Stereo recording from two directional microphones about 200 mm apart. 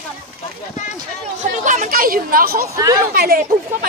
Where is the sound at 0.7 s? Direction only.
35° left (ahead or behind).